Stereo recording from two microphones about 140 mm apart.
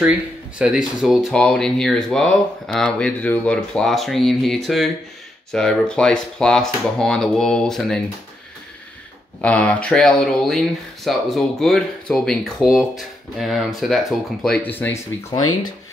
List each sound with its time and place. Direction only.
0.6 s speech: 5° right (ahead or behind)
9.4 s speech: 10° left (ahead or behind)
15.3 s speech: 30° left (ahead or behind)